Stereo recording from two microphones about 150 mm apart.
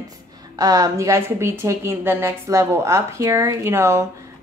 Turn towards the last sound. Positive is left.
turn(degrees=-20)  # may be behind; listen again after turning